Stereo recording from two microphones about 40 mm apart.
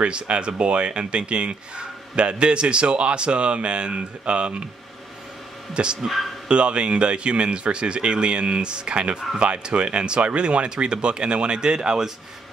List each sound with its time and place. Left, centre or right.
0.0 s speech: right
5.8 s speech: right